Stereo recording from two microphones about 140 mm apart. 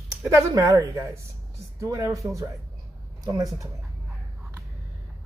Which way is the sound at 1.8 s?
20° right (ahead or behind).